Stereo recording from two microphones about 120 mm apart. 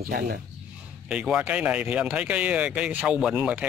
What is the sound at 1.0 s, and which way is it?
Speech, 5° right (ahead or behind).